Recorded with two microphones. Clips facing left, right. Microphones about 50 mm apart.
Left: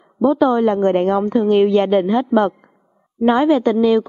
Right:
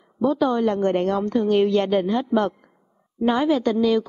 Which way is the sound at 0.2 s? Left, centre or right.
Centre.